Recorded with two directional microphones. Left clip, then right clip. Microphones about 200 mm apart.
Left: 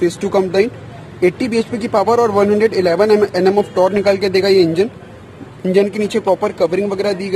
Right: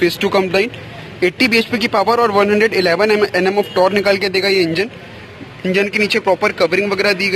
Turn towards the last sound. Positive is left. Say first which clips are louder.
# right 3 dB
turn(degrees=15)  # may be behind; listen again after turning